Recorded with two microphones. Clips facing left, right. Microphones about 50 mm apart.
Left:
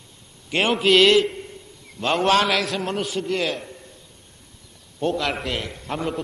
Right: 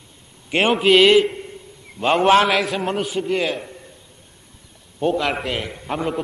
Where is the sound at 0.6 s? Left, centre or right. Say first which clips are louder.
Right 3 dB; centre.